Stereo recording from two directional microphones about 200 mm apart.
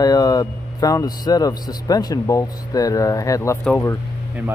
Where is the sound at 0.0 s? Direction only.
20° left (ahead or behind).